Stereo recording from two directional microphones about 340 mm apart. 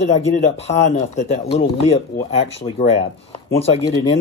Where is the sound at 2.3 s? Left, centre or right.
Centre.